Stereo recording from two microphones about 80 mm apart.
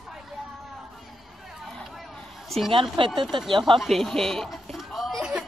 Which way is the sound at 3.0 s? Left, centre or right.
Right.